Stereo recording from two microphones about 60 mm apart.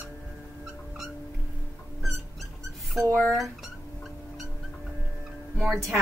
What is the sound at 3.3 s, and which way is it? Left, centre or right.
Speech, centre.